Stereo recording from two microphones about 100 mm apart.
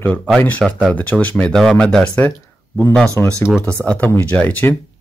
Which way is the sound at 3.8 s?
15° left (ahead or behind).